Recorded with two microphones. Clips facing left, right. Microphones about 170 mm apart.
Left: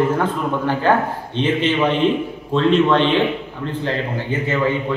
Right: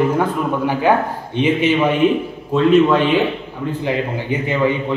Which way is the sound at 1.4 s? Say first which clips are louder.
Right 3 dB; 10° right (ahead or behind).